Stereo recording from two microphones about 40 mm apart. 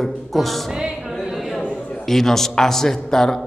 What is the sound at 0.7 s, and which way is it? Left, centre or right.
Music, centre.